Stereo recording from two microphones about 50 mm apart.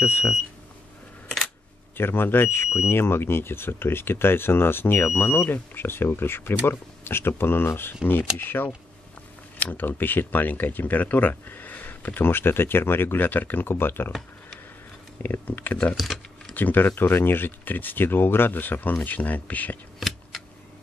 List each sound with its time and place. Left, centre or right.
0.0 s speech: left
2.0 s speech: left
15.2 s speech: left
16.0 s typing: centre
16.5 s speech: left
20.0 s scissors: centre